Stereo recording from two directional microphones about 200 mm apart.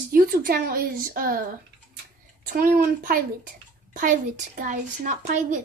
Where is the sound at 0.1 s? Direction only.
45° right (ahead or behind).